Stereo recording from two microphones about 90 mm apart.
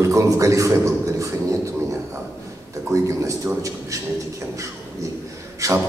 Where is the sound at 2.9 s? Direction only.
35° right (ahead or behind).